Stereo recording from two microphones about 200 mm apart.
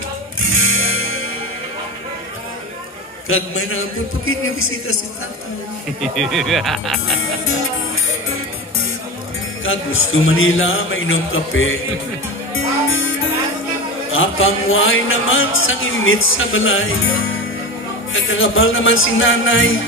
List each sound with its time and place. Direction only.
0.4 s music: 90° left
3.3 s a man's voice: 90° left
5.9 s speech: centre (ahead or behind)
7.2 s music: 90° left
9.7 s a man's voice: 90° left
12.5 s music: 90° left
14.1 s a man's voice: 90° left
18.1 s music: 80° left